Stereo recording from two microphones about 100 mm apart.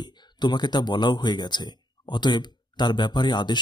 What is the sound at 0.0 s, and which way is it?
Speech, 45° left (ahead or behind).